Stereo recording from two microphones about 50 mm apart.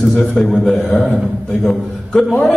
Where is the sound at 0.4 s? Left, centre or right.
Centre.